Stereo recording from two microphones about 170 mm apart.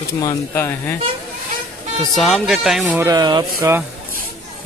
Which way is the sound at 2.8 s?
15° right (ahead or behind).